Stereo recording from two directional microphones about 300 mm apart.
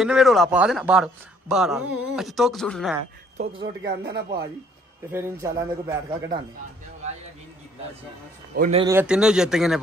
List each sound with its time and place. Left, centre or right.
0.0 s a man's voice: centre
3.8 s speech: right
5.1 s speech: centre
8.5 s a man's voice: right
8.8 s a man's voice: centre